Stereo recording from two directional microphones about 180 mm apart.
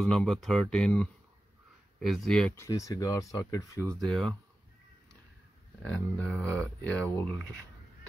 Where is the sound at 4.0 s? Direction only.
5° left (ahead or behind).